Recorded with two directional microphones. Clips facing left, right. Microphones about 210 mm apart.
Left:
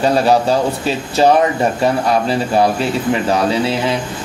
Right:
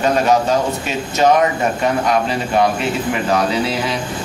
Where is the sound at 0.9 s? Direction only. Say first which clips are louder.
Left 2 dB; 35° left (ahead or behind).